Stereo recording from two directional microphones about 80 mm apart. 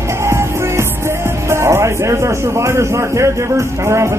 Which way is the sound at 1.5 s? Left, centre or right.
Right.